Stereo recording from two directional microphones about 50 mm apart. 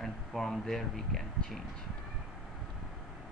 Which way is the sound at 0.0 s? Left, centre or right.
Centre.